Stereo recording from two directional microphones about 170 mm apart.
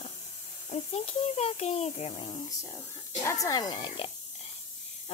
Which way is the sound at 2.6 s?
15° left (ahead or behind).